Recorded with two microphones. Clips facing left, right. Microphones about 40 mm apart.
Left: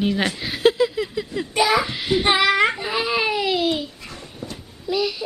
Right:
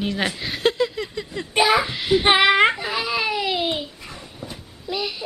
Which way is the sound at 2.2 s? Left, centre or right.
Right.